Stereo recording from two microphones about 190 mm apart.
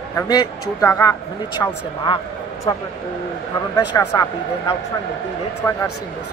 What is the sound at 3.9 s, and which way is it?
Speech, 20° left (ahead or behind).